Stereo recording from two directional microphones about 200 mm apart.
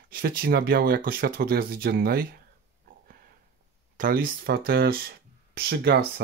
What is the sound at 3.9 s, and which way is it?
Speech, 45° right (ahead or behind).